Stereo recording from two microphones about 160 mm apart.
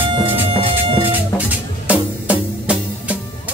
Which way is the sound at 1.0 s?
10° right (ahead or behind).